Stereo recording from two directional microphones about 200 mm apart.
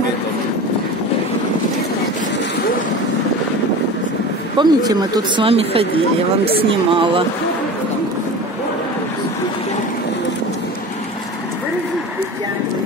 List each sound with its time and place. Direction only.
4.6 s speech: 20° right (ahead or behind)